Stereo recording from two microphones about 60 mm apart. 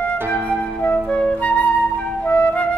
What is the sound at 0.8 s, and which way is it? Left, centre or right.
Flute, left.